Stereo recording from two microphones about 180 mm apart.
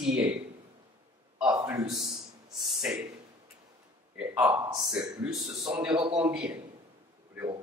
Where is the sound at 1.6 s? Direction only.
20° right (ahead or behind).